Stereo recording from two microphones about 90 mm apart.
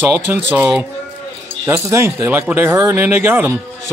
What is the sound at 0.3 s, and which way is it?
Speech, 20° right (ahead or behind).